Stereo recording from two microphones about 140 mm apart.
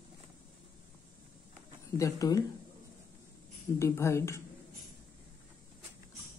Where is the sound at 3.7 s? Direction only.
20° left (ahead or behind).